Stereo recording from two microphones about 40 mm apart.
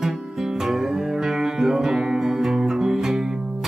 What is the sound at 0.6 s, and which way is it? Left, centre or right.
Music, centre.